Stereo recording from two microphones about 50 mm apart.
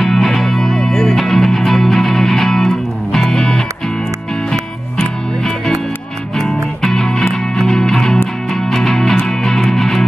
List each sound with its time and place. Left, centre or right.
0.0 s music: centre
6.3 s music: centre